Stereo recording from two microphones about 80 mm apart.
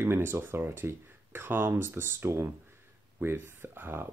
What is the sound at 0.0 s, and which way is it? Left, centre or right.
Speech, right.